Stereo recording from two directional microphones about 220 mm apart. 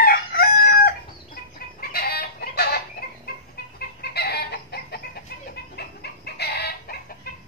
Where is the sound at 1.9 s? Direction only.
45° left (ahead or behind).